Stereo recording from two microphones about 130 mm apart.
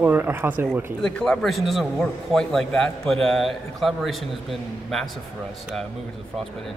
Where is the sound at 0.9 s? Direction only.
5° left (ahead or behind).